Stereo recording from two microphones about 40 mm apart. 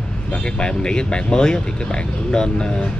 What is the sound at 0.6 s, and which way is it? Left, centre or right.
Speech, left.